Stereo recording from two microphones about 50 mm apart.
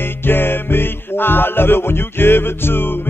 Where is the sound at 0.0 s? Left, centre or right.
Left.